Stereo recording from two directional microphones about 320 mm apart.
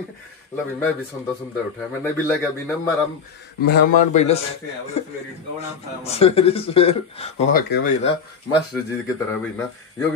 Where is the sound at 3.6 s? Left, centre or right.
Left.